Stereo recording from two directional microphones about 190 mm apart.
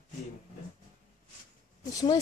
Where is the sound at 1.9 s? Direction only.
20° left (ahead or behind).